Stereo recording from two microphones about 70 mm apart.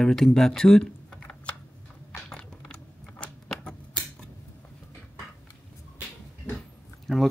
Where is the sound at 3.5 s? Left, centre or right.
Centre.